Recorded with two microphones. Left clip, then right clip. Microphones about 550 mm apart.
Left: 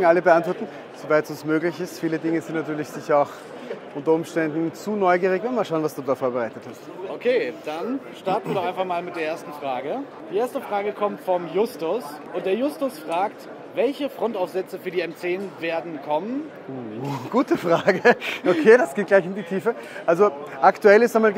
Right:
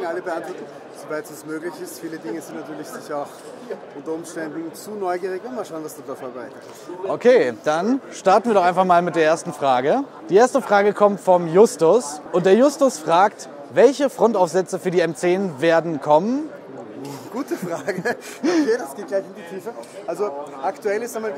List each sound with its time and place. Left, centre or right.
0.0 s speech: left
1.1 s speech: left
7.1 s speech: right
17.3 s speech: left
18.7 s speech: left
19.6 s speech: left
20.8 s speech: left